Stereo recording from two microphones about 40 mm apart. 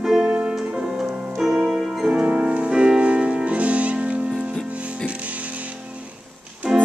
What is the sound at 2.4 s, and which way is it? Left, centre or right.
Music, right.